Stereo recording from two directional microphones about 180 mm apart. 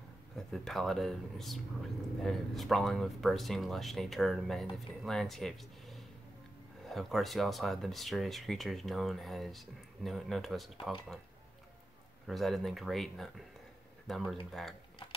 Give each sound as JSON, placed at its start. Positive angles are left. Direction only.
{"t": 0.5, "sound": "speech", "side_deg": 0}
{"t": 12.3, "sound": "speech", "side_deg": 0}